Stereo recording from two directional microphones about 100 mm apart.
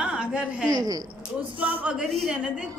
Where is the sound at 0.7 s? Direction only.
40° right (ahead or behind).